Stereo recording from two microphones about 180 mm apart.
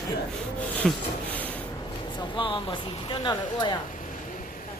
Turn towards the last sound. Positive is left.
turn(degrees=25)  # may be behind; listen again after turning